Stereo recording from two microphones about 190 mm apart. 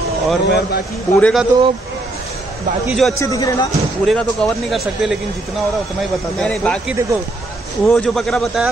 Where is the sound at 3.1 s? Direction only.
15° left (ahead or behind).